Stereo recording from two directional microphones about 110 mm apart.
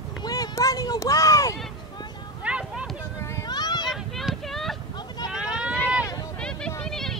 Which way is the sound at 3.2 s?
25° left (ahead or behind).